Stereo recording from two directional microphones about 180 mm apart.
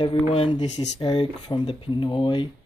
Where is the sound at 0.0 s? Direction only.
30° left (ahead or behind).